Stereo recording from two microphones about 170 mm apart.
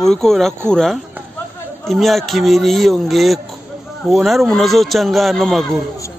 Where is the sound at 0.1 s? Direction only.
Centre (ahead or behind).